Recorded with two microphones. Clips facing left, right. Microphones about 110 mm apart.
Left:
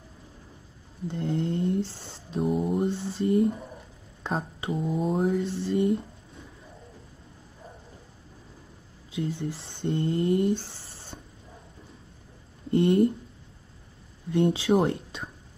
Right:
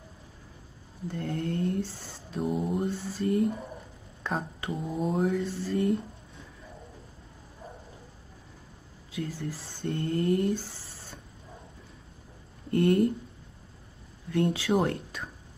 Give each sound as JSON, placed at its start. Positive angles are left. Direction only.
{"t": 1.0, "sound": "speech", "side_deg": 25}
{"t": 2.4, "sound": "mantra", "side_deg": 0}
{"t": 2.9, "sound": "speech", "side_deg": 25}
{"t": 4.2, "sound": "a sound", "side_deg": 25}
{"t": 4.7, "sound": "mantra", "side_deg": 0}
{"t": 5.4, "sound": "speech", "side_deg": 25}
{"t": 9.1, "sound": "speech", "side_deg": 25}
{"t": 12.7, "sound": "speech", "side_deg": 25}
{"t": 14.3, "sound": "speech", "side_deg": 25}